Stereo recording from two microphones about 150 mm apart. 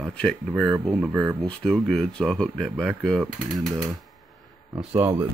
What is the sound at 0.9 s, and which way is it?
Speech, 10° right (ahead or behind).